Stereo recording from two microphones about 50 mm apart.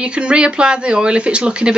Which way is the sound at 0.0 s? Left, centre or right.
Right.